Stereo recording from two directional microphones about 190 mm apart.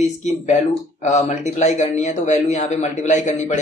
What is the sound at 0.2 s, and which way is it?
Speech, 40° left (ahead or behind).